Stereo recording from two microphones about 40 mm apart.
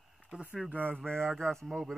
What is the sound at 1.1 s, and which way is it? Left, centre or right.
Speech, centre.